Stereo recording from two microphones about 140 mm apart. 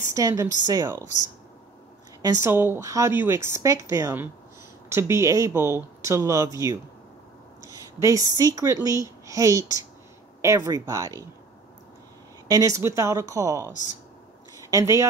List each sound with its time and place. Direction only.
0.1 s speech: 25° right (ahead or behind)
2.4 s a woman's voice: 15° right (ahead or behind)
12.4 s speech: 25° right (ahead or behind)